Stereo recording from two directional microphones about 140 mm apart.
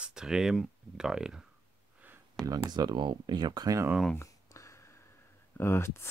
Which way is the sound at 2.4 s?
25° right (ahead or behind).